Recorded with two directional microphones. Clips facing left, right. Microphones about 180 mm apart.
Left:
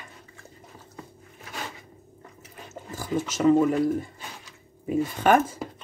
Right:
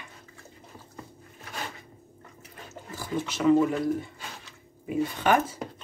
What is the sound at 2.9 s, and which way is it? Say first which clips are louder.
Speech: left 3 dB; 45° left (ahead or behind).